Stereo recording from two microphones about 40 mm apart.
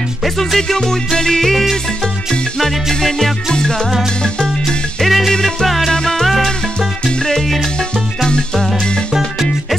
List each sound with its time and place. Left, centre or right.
0.2 s music: centre
0.6 s music: centre
5.0 s music: centre
5.3 s music: centre
6.2 s music: centre
7.1 s music: centre
9.1 s music: centre